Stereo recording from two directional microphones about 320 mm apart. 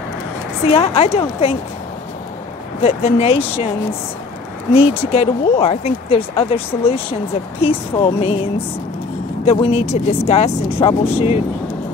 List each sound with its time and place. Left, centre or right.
0.7 s speech: centre
2.8 s speech: centre
4.7 s speech: centre